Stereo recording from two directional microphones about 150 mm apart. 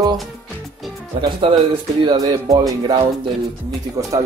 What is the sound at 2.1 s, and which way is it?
Speech, 25° right (ahead or behind).